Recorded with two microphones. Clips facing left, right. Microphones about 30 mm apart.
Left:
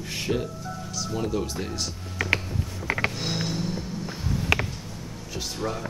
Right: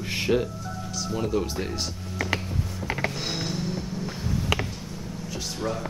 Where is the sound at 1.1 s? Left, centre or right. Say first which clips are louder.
Right 2 dB; centre.